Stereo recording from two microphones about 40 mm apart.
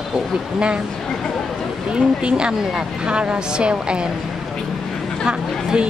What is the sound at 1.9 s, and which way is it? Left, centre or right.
A woman's voice, right.